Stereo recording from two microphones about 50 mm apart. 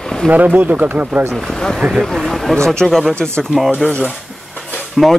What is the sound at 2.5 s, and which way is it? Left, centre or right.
Speech, centre.